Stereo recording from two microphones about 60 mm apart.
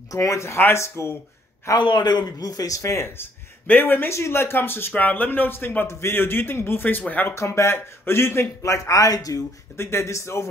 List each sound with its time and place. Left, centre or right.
0.1 s speech: left
1.7 s speech: left
2.3 s a man's voice: left
3.6 s a man's voice: left
4.1 s a man's voice: left
5.9 s a man's voice: left
7.3 s speech: left
8.7 s a man's voice: left
9.8 s speech: left